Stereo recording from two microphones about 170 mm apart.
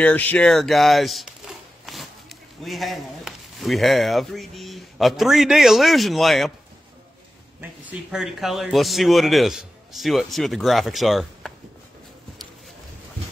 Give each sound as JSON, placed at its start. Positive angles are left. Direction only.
{"t": 0.0, "sound": "speech", "side_deg": 10}
{"t": 7.8, "sound": "speech", "side_deg": -5}